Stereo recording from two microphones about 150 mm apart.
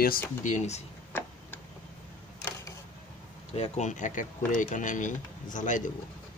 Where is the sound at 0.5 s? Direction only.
45° left (ahead or behind).